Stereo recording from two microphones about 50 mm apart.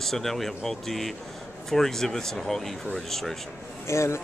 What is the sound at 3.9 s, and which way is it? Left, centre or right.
Speech, left.